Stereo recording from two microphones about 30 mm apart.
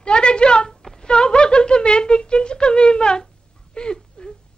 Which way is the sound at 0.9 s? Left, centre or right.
Left.